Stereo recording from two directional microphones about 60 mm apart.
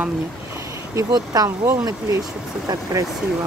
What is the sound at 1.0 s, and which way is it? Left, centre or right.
Speech, right.